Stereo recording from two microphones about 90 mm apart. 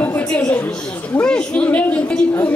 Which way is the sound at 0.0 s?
20° left (ahead or behind).